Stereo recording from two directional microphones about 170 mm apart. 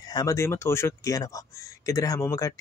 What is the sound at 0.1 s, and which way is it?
Speech, 20° left (ahead or behind).